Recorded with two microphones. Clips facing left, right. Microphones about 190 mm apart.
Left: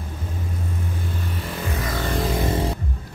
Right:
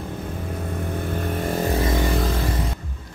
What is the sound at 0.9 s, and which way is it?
Vehicle, 55° right (ahead or behind).